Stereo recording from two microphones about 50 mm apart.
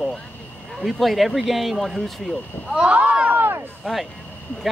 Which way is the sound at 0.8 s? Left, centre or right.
Centre.